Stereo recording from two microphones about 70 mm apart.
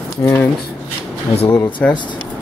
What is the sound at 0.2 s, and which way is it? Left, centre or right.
Speech, left.